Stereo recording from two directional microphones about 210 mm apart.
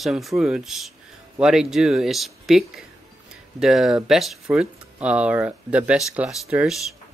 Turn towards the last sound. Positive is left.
turn(degrees=-5)  # may be behind; listen again after turning